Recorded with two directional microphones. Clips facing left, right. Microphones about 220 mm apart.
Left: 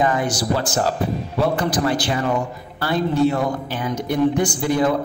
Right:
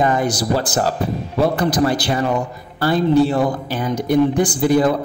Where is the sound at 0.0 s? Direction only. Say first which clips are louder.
Right 2 dB; 35° right (ahead or behind).